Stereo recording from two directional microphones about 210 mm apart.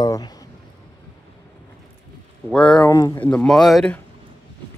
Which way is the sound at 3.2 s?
5° left (ahead or behind).